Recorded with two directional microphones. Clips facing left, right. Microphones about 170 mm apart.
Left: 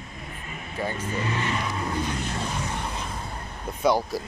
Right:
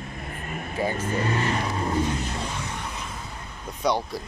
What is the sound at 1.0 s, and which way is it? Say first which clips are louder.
Speech: right 3 dB; 45° right (ahead or behind).